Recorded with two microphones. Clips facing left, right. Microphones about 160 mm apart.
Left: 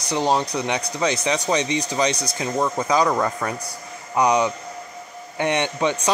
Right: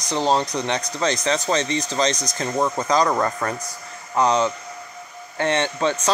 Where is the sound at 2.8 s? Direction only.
10° left (ahead or behind).